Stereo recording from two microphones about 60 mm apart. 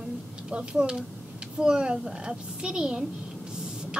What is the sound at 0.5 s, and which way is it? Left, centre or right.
A woman's voice, centre.